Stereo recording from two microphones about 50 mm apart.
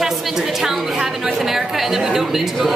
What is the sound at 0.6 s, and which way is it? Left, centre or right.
A woman's voice, centre.